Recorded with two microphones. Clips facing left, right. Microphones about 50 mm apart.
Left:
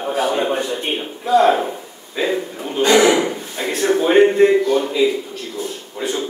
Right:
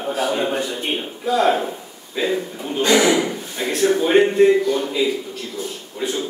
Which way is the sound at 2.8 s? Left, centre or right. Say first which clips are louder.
Left 3 dB; left.